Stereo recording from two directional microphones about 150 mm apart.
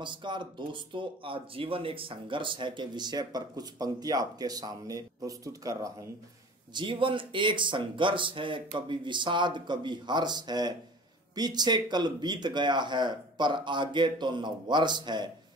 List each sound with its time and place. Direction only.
0.0 s speech: 30° right (ahead or behind)
6.7 s speech: 35° right (ahead or behind)